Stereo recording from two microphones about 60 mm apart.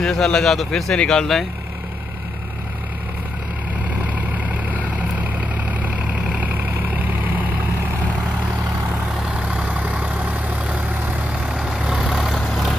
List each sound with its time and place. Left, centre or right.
0.0 s speech: centre
4.0 s vehicle: right
9.4 s vehicle: centre